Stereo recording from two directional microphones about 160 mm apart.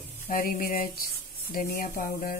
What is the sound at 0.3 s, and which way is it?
Speech, 65° left (ahead or behind).